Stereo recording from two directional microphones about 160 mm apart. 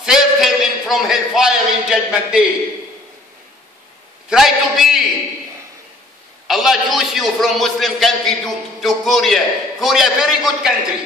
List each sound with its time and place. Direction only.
0.0 s a man's voice: 5° right (ahead or behind)
4.3 s a man's voice: centre (ahead or behind)
6.4 s a man's voice: centre (ahead or behind)